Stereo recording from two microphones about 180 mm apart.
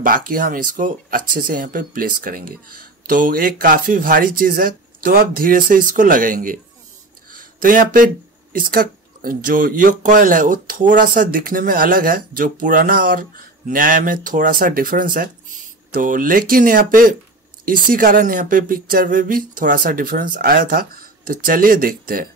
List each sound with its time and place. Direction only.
0.0 s speech: 50° right (ahead or behind)
7.2 s a sound: 50° right (ahead or behind)
8.5 s speech: 55° right (ahead or behind)